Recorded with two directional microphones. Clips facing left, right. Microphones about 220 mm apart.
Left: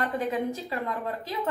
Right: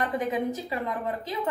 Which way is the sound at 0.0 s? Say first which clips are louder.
Right 1 dB; 20° right (ahead or behind).